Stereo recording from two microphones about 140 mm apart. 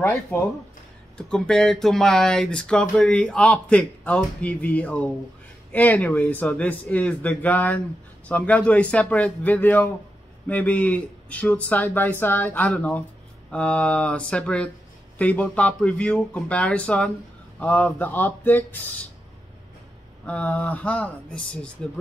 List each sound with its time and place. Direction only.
0.0 s speech: 20° left (ahead or behind)
1.1 s speech: 5° left (ahead or behind)
20.2 s speech: 10° left (ahead or behind)